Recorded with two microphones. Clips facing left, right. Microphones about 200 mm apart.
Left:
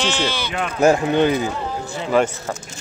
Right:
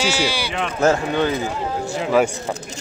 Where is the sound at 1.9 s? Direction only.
5° right (ahead or behind).